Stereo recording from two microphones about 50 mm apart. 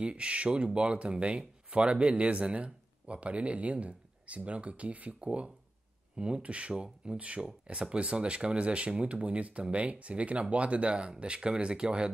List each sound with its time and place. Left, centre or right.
0.0 s speech: right